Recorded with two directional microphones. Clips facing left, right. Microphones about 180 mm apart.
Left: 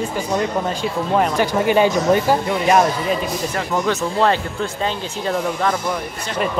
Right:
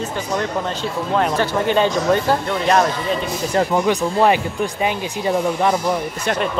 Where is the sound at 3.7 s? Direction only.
15° right (ahead or behind).